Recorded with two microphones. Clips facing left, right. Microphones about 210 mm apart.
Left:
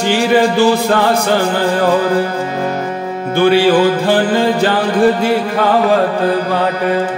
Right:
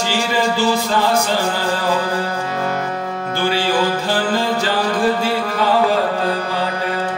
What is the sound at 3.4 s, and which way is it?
Music, 60° left (ahead or behind).